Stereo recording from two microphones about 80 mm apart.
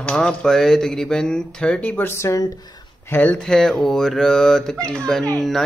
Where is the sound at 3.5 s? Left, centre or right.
Centre.